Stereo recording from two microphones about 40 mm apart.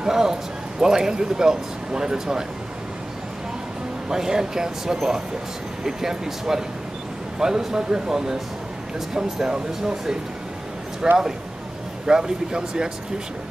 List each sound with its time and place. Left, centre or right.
0.0 s speech: centre
4.1 s speech: centre